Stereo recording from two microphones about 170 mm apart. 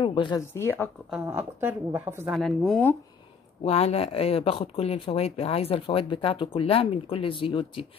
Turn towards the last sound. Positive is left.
turn(degrees=30)  # may be behind; listen again after turning